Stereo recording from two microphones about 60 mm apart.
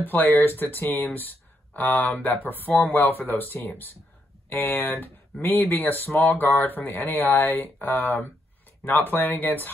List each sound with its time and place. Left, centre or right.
0.0 s speech: left